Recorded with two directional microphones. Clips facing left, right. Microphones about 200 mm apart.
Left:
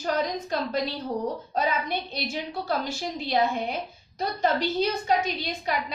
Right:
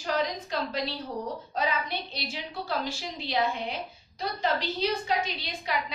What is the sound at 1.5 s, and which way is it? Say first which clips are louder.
A woman's voice: left 2 dB; 45° left (ahead or behind).